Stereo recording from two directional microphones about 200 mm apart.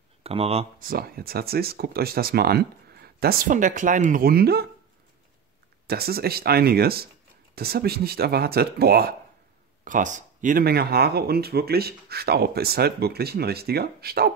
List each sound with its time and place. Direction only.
0.2 s speech: 30° right (ahead or behind)
0.7 s speech: 45° right (ahead or behind)
5.9 s speech: 50° right (ahead or behind)
9.8 s speech: 40° right (ahead or behind)